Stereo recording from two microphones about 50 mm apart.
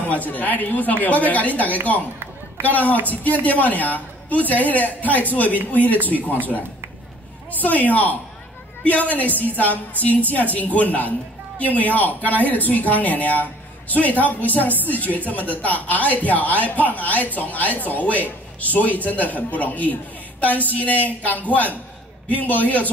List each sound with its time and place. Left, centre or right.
0.1 s a woman's voice: left
7.6 s a woman's voice: left